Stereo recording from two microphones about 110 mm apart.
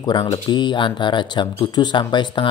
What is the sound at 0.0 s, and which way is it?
Speech, 40° left (ahead or behind).